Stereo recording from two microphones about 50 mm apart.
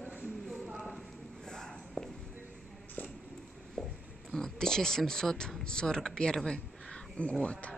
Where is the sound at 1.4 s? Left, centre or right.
Centre.